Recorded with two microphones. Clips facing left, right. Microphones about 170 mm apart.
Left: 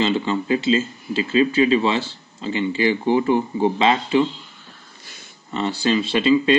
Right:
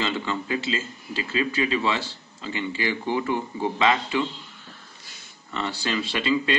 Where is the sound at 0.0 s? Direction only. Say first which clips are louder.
Left 7 dB; 20° left (ahead or behind).